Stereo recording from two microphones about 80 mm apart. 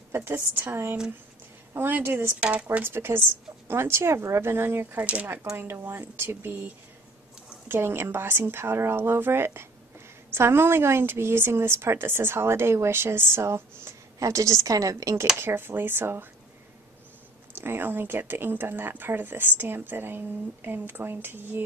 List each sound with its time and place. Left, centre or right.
0.1 s a woman's voice: right
2.4 s speech: centre
2.9 s speech: right
5.6 s a woman's voice: right
15.3 s speech: right
17.6 s speech: right